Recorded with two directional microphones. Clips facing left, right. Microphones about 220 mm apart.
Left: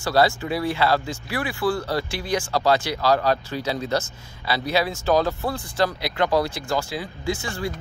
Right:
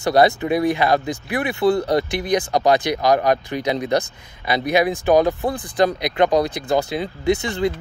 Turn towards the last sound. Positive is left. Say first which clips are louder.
# right 8 dB
turn(degrees=-20)  # may be behind; listen again after turning